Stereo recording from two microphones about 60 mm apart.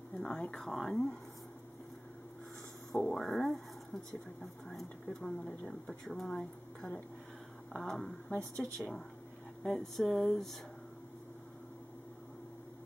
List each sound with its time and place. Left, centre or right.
0.2 s speech: centre
2.9 s speech: centre
5.5 s speech: left
5.9 s speech: centre